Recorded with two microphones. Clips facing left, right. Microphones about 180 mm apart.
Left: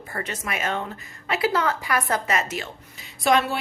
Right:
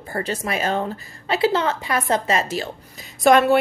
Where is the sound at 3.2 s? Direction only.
55° right (ahead or behind).